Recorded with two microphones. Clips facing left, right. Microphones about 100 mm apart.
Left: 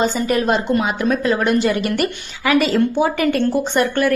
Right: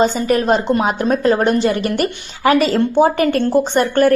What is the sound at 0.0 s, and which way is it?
A woman's voice, 35° right (ahead or behind).